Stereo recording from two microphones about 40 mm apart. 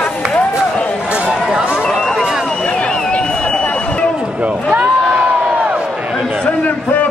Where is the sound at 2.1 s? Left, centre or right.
Centre.